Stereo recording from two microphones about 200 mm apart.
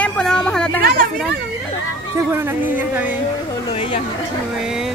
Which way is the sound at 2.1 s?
10° right (ahead or behind).